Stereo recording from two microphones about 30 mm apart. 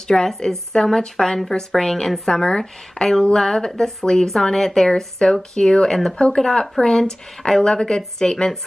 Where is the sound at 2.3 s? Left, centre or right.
Left.